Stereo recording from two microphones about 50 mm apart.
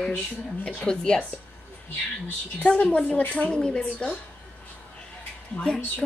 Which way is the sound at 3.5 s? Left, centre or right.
Centre.